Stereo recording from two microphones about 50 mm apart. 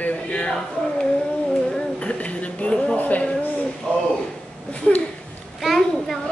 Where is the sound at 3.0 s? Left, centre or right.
Left.